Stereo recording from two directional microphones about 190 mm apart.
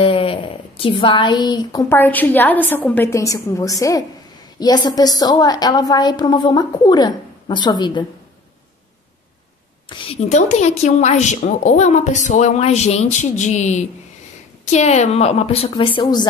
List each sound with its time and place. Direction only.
0.0 s a woman's voice: 30° left (ahead or behind)
9.8 s a woman's voice: 35° left (ahead or behind)